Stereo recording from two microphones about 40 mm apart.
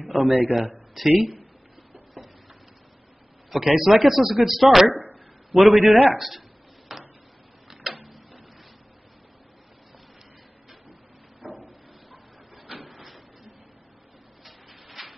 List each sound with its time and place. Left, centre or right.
0.0 s a sound: centre
0.3 s a man's voice: right
0.7 s speech: centre
3.4 s speech: centre
6.9 s a sound: centre
7.8 s tick-tock: centre
12.8 s printer: centre